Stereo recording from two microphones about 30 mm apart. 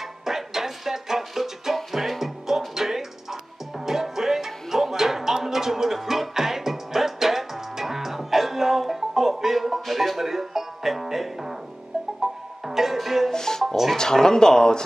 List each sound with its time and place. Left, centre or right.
0.2 s music: centre
13.3 s music: centre
13.9 s speech: centre